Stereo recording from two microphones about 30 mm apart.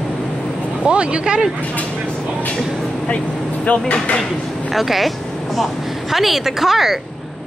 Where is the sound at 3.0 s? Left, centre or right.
Left.